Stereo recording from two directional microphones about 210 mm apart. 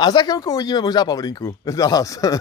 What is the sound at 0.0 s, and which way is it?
Speech, 20° left (ahead or behind).